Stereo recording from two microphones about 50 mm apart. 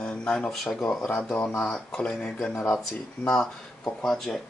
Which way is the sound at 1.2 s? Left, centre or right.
Left.